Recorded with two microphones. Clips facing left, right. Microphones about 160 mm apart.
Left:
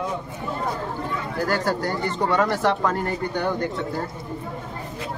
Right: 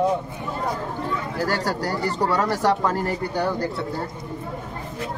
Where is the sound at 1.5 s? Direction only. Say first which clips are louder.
Left 2 dB; 35° right (ahead or behind).